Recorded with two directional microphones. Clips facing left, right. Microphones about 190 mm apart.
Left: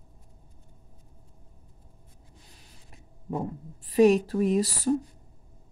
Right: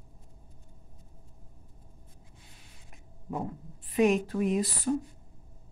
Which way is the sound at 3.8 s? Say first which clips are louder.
Left 5 dB; 35° left (ahead or behind).